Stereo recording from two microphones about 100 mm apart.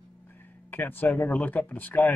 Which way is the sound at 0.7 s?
20° left (ahead or behind).